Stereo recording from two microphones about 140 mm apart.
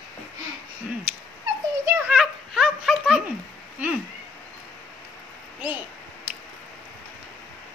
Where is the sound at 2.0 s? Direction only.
5° right (ahead or behind).